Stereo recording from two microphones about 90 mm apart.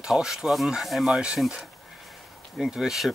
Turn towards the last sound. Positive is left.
turn(degrees=-5)  # may be behind; listen again after turning